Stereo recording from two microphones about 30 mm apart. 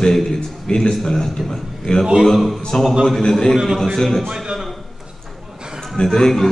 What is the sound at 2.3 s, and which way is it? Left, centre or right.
Speech, centre.